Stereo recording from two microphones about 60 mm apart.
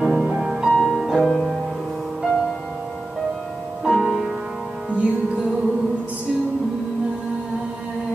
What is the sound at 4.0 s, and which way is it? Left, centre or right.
Music, centre.